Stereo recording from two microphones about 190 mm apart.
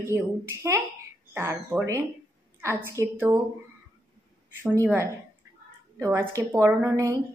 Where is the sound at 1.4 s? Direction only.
15° right (ahead or behind).